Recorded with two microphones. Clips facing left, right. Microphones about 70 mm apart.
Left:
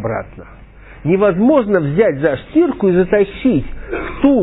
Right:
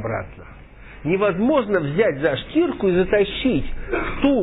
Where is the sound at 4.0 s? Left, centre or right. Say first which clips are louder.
Left 7 dB; left.